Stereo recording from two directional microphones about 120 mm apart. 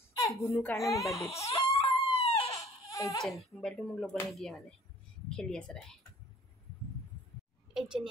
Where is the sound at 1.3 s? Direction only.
55° left (ahead or behind).